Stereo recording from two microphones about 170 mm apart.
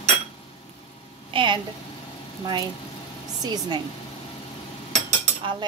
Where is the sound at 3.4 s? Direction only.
25° right (ahead or behind).